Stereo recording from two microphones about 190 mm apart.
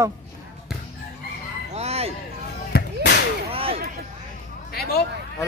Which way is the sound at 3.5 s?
30° right (ahead or behind).